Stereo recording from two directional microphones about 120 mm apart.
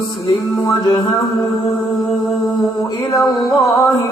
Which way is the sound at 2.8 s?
25° left (ahead or behind).